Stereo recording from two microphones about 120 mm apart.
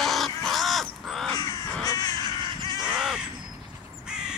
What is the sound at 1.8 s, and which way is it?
Crow, 30° left (ahead or behind).